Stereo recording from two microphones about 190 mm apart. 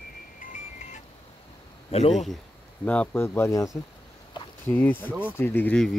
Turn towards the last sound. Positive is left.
turn(degrees=10)  # may be behind; listen again after turning